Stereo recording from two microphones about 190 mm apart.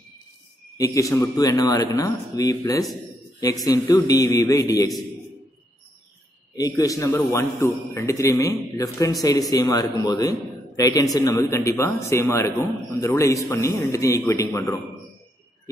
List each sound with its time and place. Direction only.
0.7 s a man's voice: 15° left (ahead or behind)
6.8 s a man's voice: 15° left (ahead or behind)